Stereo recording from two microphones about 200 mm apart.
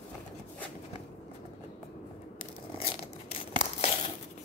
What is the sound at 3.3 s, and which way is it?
Tearing, 30° left (ahead or behind).